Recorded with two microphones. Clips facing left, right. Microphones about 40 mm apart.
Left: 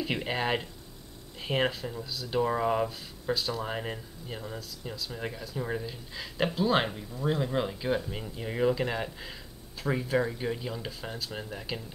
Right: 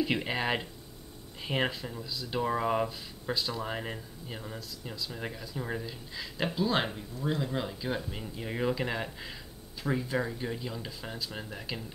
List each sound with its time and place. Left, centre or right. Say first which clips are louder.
0.0 s speech: even; centre